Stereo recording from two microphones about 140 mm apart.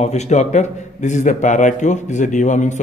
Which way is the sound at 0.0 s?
55° left (ahead or behind).